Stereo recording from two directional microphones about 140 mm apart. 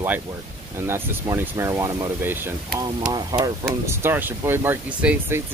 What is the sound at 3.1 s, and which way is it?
Speech, 30° right (ahead or behind).